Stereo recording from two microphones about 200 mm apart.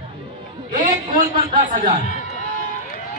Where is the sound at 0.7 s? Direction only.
45° right (ahead or behind).